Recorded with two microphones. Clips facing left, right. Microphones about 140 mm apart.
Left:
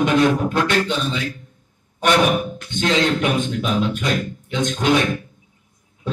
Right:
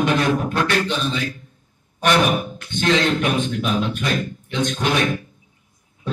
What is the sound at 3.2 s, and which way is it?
A man's voice, 20° left (ahead or behind).